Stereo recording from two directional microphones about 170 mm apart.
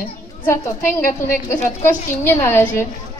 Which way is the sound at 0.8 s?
15° left (ahead or behind).